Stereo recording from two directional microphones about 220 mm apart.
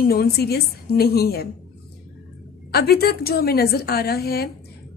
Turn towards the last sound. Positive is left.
turn(degrees=45)  # may be behind; listen again after turning